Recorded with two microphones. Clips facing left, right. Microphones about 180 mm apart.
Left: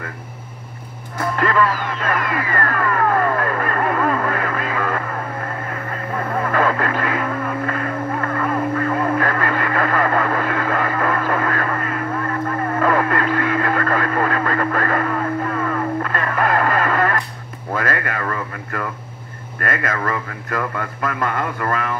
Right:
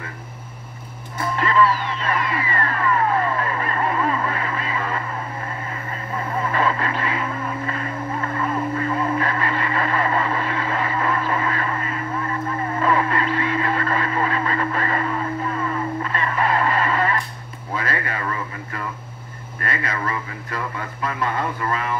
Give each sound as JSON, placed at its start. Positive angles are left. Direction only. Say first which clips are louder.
{"t": 1.2, "sound": "music", "louder": "left 1 dB", "side_deg": 50}
{"t": 5.7, "sound": "vehicle", "louder": "left 4 dB", "side_deg": 55}
{"t": 17.7, "sound": "a sound", "louder": "left 3 dB", "side_deg": 50}